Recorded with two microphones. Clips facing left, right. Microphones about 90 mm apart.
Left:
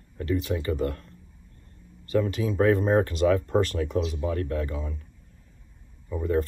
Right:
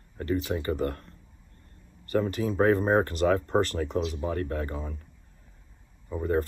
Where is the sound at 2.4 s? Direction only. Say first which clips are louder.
Even; 40° right (ahead or behind).